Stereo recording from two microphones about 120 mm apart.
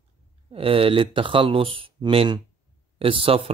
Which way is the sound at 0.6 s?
50° right (ahead or behind).